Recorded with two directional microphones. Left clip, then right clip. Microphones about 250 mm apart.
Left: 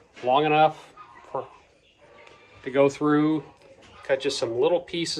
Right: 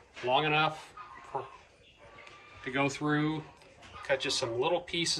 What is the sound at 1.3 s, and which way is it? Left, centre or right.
Speech, left.